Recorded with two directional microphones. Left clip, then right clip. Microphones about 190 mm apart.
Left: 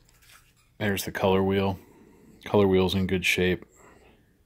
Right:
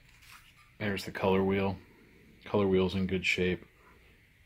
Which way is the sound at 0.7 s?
55° left (ahead or behind).